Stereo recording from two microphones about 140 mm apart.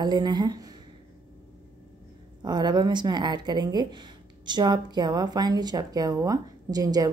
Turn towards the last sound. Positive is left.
turn(degrees=-25)  # may be behind; listen again after turning